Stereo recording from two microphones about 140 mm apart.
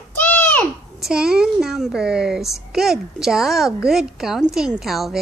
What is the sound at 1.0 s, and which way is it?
A child's voice, 5° right (ahead or behind).